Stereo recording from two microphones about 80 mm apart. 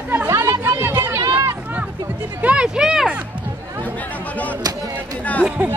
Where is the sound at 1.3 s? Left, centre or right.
Right.